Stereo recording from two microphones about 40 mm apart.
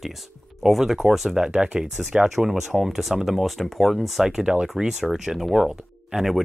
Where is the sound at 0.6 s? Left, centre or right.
Centre.